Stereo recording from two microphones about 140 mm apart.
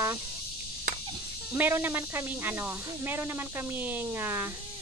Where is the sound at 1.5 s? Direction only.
15° right (ahead or behind).